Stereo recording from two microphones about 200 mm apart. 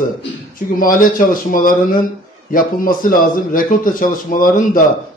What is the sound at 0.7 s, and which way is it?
A man's voice, 45° left (ahead or behind).